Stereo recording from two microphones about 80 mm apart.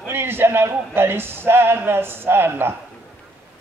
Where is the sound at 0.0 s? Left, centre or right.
Right.